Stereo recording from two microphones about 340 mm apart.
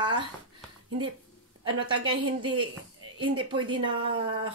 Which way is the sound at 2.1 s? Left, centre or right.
Centre.